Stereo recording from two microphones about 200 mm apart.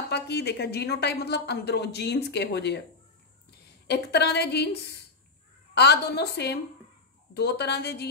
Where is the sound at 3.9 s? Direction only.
55° left (ahead or behind).